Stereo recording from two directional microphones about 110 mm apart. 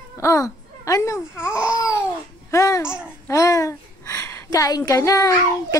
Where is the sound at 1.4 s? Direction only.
10° right (ahead or behind).